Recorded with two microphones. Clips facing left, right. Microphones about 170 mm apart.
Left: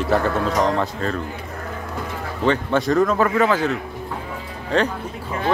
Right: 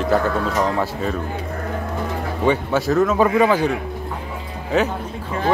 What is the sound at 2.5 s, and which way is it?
A man's voice, 5° right (ahead or behind).